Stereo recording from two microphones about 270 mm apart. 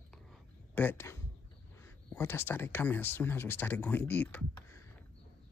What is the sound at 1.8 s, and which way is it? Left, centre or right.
Speech, centre.